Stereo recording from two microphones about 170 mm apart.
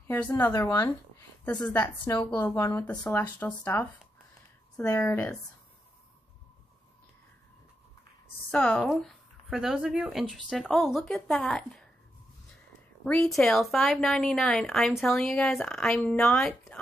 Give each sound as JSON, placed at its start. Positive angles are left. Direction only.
{"t": 0.0, "sound": "speech", "side_deg": 15}
{"t": 8.5, "sound": "a woman's voice", "side_deg": 10}
{"t": 13.0, "sound": "a woman's voice", "side_deg": 5}